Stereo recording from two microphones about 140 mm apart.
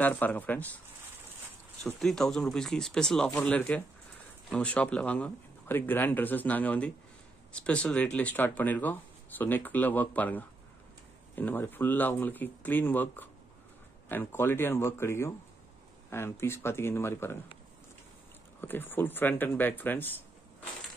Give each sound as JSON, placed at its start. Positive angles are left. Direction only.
{"t": 0.0, "sound": "speech", "side_deg": 15}
{"t": 2.0, "sound": "speech", "side_deg": 5}
{"t": 18.6, "sound": "speech", "side_deg": 15}